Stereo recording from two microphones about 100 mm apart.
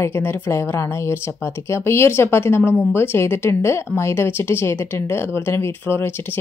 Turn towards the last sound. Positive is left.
turn(degrees=25)  # may be behind; listen again after turning